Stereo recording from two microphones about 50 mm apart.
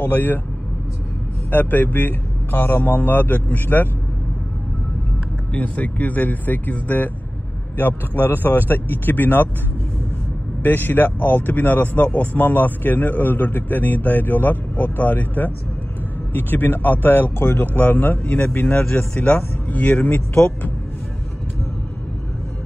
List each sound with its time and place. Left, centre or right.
0.0 s speech: left
1.5 s speech: left
5.5 s speech: left
10.6 s speech: left
18.9 s speech: left